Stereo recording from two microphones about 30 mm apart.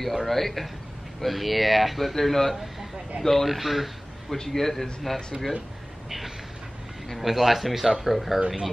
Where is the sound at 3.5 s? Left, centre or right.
Centre.